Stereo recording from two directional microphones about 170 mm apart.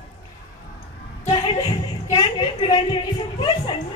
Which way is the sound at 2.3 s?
25° left (ahead or behind).